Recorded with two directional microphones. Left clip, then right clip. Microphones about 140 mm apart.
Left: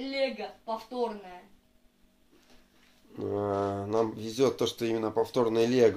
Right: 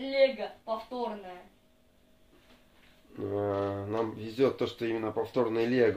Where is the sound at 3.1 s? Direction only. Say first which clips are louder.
Left 1 dB; 30° left (ahead or behind).